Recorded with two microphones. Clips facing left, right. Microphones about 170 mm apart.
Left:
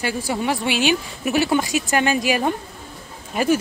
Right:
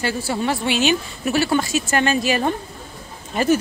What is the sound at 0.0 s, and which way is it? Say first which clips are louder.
Speech: right 1 dB; 15° left (ahead or behind).